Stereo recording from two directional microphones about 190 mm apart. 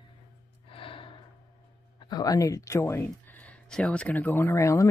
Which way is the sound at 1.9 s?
20° left (ahead or behind).